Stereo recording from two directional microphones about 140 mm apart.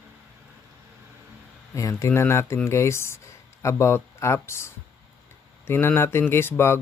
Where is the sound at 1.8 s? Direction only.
20° left (ahead or behind).